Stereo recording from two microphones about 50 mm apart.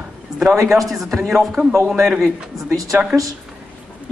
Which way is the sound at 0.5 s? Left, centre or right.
Right.